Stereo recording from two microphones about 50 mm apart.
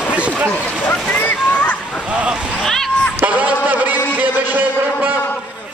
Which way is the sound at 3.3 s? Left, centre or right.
Right.